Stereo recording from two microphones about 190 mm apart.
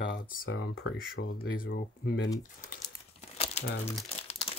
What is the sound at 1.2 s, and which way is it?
Speech, 50° left (ahead or behind).